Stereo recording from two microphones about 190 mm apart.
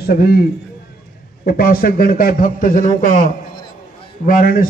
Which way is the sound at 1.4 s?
50° left (ahead or behind).